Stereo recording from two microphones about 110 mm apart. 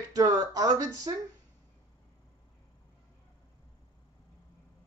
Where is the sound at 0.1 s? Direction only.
35° right (ahead or behind).